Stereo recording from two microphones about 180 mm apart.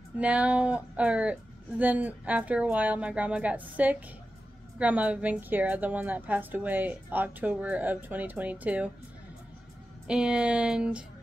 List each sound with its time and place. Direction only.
0.2 s a woman's voice: 5° right (ahead or behind)
10.0 s speech: 5° right (ahead or behind)